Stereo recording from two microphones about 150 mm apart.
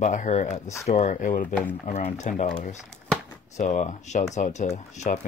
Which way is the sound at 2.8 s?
5° left (ahead or behind).